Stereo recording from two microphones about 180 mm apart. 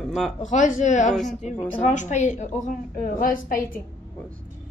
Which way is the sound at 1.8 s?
40° left (ahead or behind).